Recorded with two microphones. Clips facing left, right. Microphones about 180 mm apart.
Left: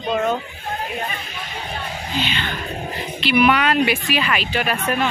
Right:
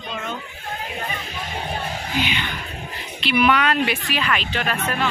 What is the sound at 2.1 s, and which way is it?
Music, 15° right (ahead or behind).